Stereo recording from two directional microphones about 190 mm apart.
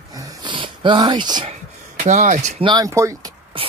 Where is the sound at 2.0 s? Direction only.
40° right (ahead or behind).